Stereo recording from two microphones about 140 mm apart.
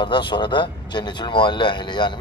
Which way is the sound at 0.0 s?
35° left (ahead or behind).